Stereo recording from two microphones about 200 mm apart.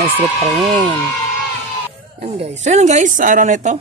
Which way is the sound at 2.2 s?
30° right (ahead or behind).